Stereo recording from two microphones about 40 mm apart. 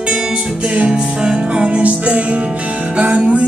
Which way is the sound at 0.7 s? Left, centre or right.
Right.